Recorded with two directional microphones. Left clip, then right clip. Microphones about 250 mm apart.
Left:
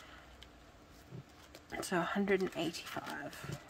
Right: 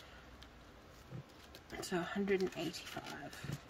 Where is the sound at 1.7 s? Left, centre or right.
Centre.